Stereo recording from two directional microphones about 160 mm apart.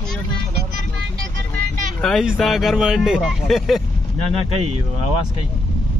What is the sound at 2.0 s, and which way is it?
Speech, centre (ahead or behind).